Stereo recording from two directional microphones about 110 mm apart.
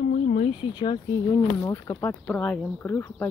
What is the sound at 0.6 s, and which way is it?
Speech, 45° left (ahead or behind).